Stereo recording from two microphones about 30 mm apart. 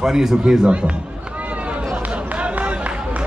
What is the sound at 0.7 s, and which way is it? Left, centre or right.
Speech, right.